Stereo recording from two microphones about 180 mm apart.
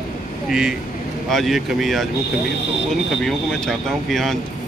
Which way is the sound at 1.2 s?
Centre (ahead or behind).